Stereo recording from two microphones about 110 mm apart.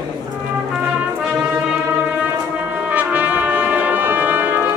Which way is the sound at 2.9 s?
15° right (ahead or behind).